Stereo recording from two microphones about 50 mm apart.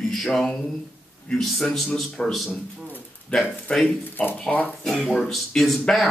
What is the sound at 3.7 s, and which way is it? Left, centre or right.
Speech, left.